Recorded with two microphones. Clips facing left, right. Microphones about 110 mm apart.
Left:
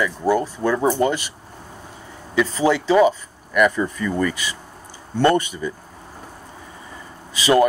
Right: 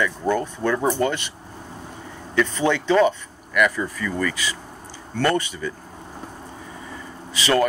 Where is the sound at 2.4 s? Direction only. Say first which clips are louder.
Left 2 dB; 5° left (ahead or behind).